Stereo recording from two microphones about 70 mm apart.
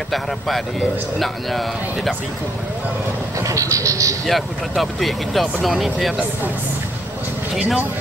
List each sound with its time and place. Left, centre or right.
0.1 s speech: centre
3.3 s speech: right
4.3 s speech: centre
7.5 s speech: centre